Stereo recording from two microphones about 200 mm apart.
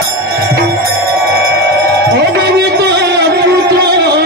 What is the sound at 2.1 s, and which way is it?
Music, 55° right (ahead or behind).